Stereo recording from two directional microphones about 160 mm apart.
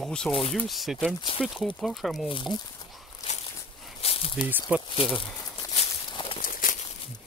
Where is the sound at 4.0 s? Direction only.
40° left (ahead or behind).